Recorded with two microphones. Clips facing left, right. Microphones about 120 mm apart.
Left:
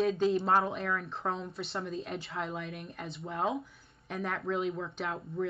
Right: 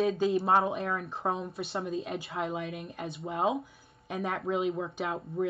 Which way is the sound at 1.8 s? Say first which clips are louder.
Right 3 dB; centre (ahead or behind).